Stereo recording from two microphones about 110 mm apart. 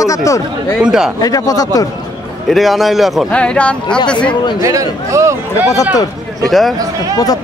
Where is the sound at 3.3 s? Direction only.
10° left (ahead or behind).